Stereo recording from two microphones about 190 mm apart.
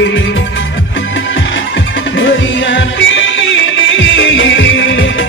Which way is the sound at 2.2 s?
80° left.